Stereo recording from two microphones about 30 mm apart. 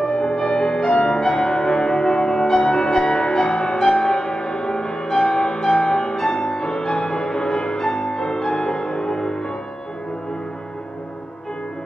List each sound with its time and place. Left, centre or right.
0.1 s music: left
0.7 s music: left